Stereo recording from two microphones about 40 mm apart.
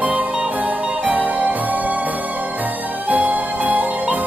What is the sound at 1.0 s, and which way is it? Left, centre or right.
Music, right.